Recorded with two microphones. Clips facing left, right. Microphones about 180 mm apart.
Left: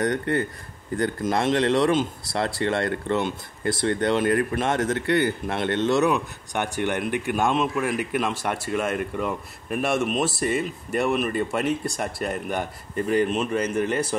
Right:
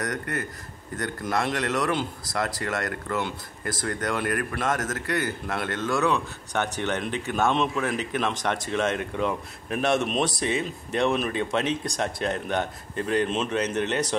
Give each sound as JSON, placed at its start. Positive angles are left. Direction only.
{"t": 0.0, "sound": "speech", "side_deg": 25}
{"t": 13.8, "sound": "a man's voice", "side_deg": -75}